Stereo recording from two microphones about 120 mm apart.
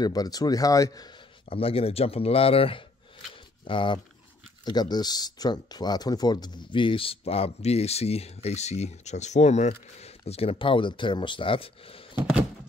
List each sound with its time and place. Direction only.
0.0 s speech: 30° left (ahead or behind)
1.5 s speech: 50° left (ahead or behind)